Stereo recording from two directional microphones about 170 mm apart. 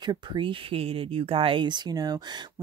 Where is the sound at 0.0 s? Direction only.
25° right (ahead or behind).